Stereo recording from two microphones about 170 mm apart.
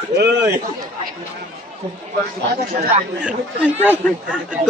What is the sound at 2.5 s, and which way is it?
Speech, 75° right (ahead or behind).